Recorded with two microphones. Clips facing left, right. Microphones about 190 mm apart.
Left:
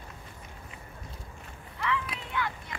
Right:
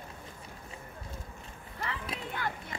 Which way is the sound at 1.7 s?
40° right (ahead or behind).